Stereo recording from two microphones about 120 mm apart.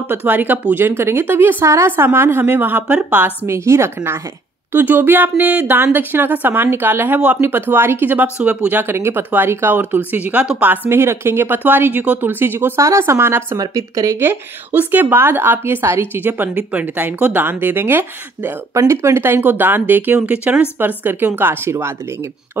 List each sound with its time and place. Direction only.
0.1 s speech: 15° right (ahead or behind)